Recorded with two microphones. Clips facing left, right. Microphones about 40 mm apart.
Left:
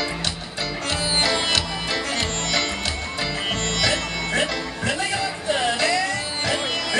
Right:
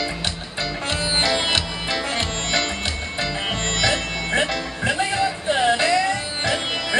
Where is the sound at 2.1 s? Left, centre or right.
Centre.